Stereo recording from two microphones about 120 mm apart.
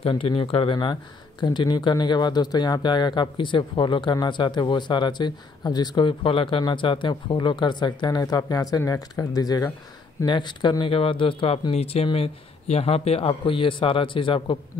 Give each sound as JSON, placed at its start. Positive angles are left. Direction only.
{"t": 0.0, "sound": "speech", "side_deg": 50}
{"t": 11.7, "sound": "speech", "side_deg": 60}